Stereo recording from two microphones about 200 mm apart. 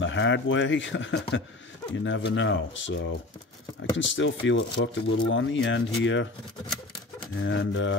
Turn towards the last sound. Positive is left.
turn(degrees=70)  # may be behind; listen again after turning